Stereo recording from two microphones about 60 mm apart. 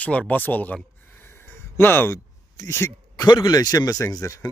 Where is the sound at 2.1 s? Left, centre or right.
Left.